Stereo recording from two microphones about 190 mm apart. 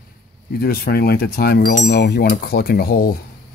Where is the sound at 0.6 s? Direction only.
55° left (ahead or behind).